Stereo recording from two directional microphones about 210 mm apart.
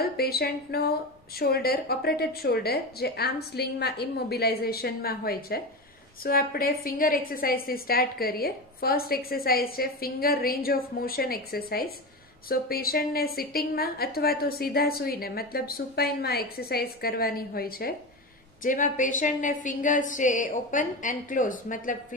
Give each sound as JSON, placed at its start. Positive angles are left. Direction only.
{"t": 0.0, "sound": "a woman's voice", "side_deg": 50}